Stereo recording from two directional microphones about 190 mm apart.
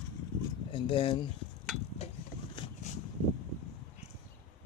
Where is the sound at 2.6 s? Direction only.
25° left (ahead or behind).